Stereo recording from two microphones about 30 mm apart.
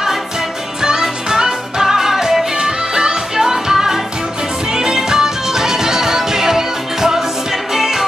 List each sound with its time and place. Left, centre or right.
0.8 s music: right